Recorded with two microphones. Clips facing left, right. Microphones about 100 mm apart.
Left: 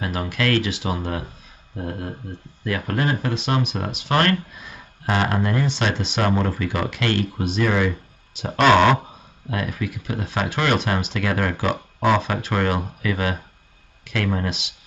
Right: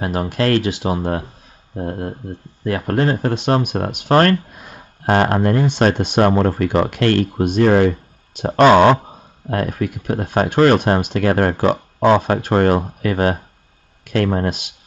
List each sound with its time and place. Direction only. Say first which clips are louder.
0.0 s speech: right 5 dB; 40° right (ahead or behind)
3.3 s speech: right 6 dB; 50° right (ahead or behind)
8.6 s speech: right 5 dB; 30° right (ahead or behind)
9.5 s speech: right 6 dB; 45° right (ahead or behind)